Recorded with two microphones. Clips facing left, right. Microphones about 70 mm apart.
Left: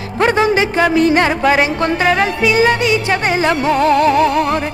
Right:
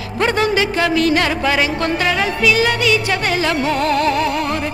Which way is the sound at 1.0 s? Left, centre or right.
Left.